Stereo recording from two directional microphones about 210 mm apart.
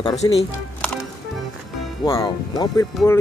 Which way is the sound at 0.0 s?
20° left (ahead or behind).